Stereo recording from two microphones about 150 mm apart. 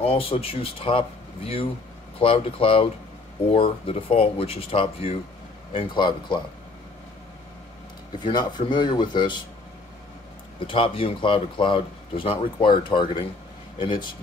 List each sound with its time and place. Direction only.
0.0 s speech: 40° left (ahead or behind)
8.2 s speech: 30° left (ahead or behind)
10.7 s speech: 35° left (ahead or behind)